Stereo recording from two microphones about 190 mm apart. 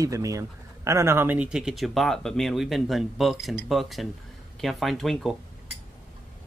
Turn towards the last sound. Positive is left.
turn(degrees=0)  # may be behind; listen again after turning